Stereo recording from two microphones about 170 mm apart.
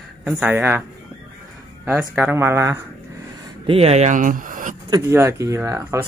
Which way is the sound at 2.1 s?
10° right (ahead or behind).